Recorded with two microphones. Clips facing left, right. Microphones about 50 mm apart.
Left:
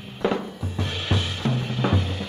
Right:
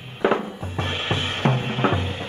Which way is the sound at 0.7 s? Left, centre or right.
Right.